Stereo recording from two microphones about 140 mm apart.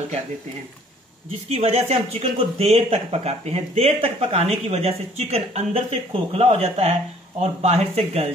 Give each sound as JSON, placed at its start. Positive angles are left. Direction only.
{"t": 1.5, "sound": "speech", "side_deg": -50}